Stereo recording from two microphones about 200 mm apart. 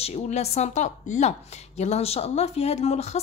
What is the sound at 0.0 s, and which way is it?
Speech, 30° left (ahead or behind).